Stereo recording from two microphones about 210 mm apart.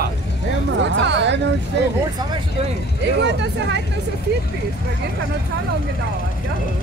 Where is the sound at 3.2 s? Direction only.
55° right (ahead or behind).